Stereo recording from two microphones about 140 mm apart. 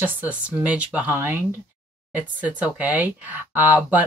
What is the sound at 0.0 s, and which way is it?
Speech, 10° right (ahead or behind).